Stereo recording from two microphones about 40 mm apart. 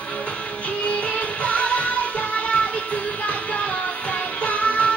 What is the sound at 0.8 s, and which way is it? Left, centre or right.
Music, left.